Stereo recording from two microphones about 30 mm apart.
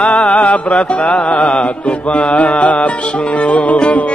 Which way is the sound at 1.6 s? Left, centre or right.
Left.